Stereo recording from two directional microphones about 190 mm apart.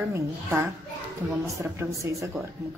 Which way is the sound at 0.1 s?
15° right (ahead or behind).